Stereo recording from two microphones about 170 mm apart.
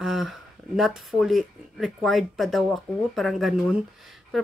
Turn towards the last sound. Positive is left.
turn(degrees=0)  # may be behind; listen again after turning